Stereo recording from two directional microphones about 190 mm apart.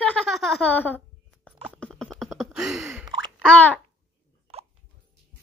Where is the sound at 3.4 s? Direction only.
5° left (ahead or behind).